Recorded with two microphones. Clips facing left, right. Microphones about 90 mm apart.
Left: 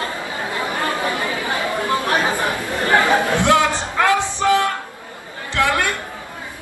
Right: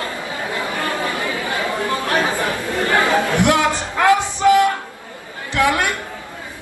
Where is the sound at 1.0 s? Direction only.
20° left (ahead or behind).